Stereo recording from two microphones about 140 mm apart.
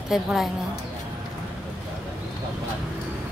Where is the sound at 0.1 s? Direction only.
5° right (ahead or behind).